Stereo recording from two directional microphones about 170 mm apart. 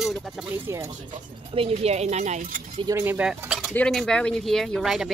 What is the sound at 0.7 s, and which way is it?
Speech, 15° right (ahead or behind).